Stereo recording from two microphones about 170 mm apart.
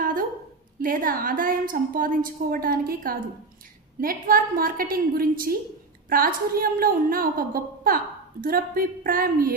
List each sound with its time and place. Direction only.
0.7 s a woman's voice: 55° right (ahead or behind)